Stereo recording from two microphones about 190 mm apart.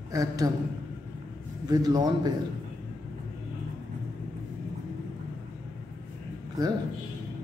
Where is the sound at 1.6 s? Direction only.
20° right (ahead or behind).